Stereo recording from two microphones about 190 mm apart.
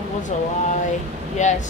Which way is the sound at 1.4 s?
40° left (ahead or behind).